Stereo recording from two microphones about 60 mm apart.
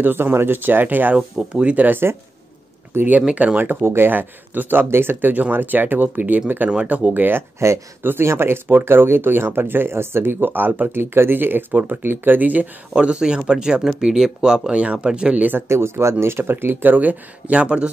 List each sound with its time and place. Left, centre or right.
0.0 s speech: right
2.9 s speech: right
3.3 s speech: centre
3.8 s speech: right
6.7 s speech: centre
7.2 s speech: right
7.5 s speech: right
8.0 s speech: right
12.9 s speech: centre
15.7 s speech: right; by 17.8 s centre